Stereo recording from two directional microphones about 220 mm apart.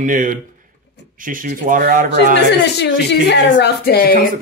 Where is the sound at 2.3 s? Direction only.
50° left (ahead or behind).